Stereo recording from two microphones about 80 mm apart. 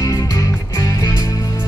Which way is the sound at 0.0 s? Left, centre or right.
Left.